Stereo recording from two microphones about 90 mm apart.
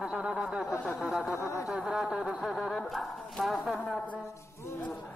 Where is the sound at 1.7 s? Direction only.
5° right (ahead or behind).